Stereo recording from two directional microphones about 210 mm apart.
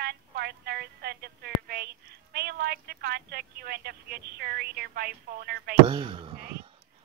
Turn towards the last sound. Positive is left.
turn(degrees=-25)  # may be behind; listen again after turning